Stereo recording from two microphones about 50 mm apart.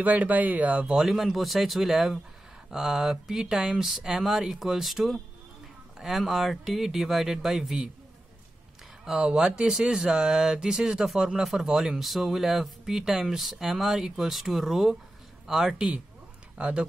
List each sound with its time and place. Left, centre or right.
0.0 s speech: right
0.8 s speech: centre
9.0 s speech: centre
16.5 s speech: right